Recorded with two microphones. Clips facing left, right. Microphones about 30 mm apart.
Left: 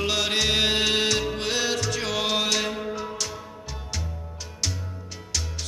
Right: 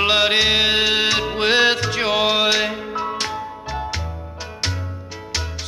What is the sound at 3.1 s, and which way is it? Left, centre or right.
Music, right.